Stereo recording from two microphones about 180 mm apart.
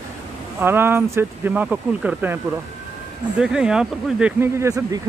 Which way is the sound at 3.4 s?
5° right (ahead or behind).